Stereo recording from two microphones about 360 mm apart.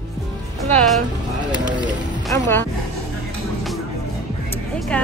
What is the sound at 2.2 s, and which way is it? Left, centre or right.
Music, centre.